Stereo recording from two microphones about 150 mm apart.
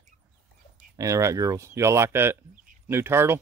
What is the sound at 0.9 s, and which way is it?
Speech, 20° right (ahead or behind).